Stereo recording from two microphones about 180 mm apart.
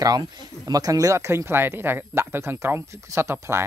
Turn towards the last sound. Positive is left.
turn(degrees=-15)  # may be behind; listen again after turning